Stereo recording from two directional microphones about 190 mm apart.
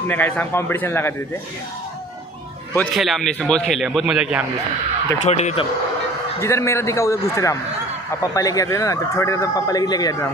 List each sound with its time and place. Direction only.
0.1 s speech: 10° left (ahead or behind)
2.9 s a man's voice: centre (ahead or behind)
5.2 s speech: 35° left (ahead or behind)
6.4 s speech: 15° left (ahead or behind)